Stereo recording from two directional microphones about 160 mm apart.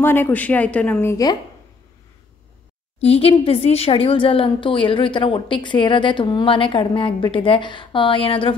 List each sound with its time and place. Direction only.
0.0 s speech: 10° left (ahead or behind)
3.0 s a woman's voice: 40° left (ahead or behind)